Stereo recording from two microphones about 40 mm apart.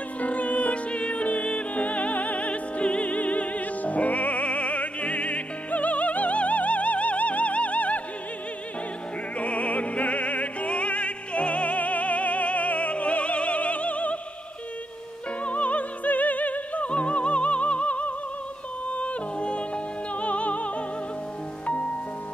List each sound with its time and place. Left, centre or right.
0.2 s music: left
9.4 s opera: left
15.4 s opera: left
18.9 s music: left